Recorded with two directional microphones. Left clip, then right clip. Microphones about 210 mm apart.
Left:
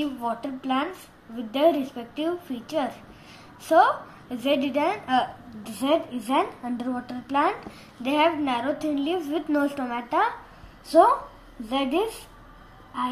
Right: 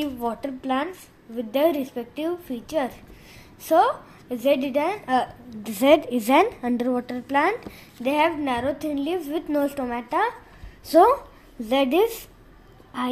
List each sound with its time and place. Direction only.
0.0 s a woman's voice: 45° right (ahead or behind)